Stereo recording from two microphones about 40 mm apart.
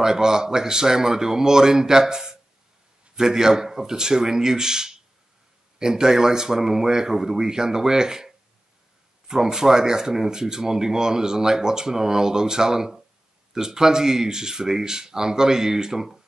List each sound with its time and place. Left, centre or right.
0.0 s speech: centre
9.3 s speech: centre